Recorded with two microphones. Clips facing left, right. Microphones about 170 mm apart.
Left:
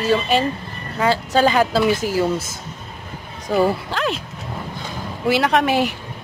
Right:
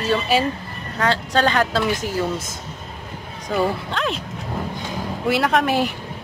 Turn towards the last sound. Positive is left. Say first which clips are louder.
# left 1 dB
turn(degrees=0)  # may be behind; listen again after turning